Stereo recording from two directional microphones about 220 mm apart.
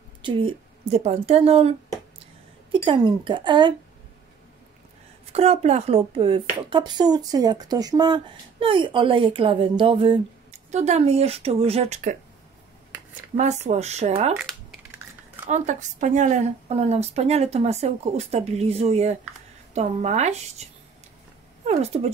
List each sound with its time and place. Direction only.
0.2 s speech: 25° right (ahead or behind)
5.3 s speech: 30° right (ahead or behind)
13.7 s speech: 30° right (ahead or behind)
15.5 s a woman's voice: 35° right (ahead or behind)
21.6 s speech: 30° right (ahead or behind)